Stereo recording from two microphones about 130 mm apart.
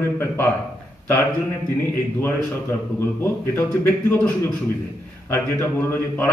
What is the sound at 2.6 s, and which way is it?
A man's voice, 20° left (ahead or behind).